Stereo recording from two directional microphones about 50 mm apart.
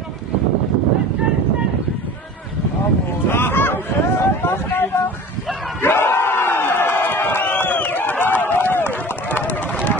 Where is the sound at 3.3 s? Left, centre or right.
Left.